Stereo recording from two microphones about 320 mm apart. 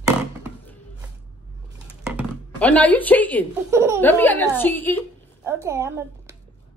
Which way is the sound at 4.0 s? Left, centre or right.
Centre.